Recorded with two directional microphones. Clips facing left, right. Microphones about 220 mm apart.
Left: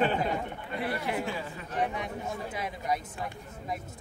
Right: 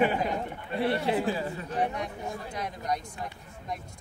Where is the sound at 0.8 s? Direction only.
30° right (ahead or behind).